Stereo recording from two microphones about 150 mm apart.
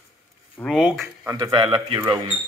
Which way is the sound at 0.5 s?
5° left (ahead or behind).